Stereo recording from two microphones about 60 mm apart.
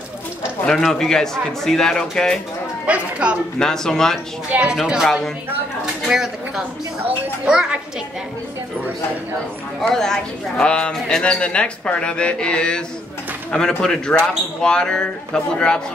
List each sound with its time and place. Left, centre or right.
0.8 s speech: centre
2.9 s speech: right
3.5 s speech: centre
4.5 s speech: right
5.0 s a woman's voice: centre
6.0 s speech: centre
9.8 s speech: centre